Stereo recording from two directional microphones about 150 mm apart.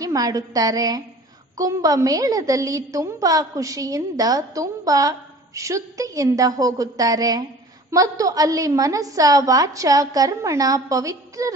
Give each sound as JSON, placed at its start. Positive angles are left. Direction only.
{"t": 0.0, "sound": "a woman's voice", "side_deg": -25}